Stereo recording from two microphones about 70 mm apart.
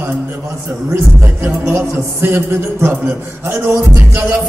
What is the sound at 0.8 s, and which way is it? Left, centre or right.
Music, right.